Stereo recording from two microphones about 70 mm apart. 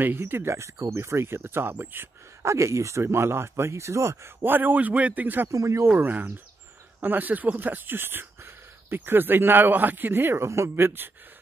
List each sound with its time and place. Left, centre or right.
0.0 s speech: right
2.4 s speech: right
4.4 s speech: right
5.5 s speech: right
5.9 s speech: right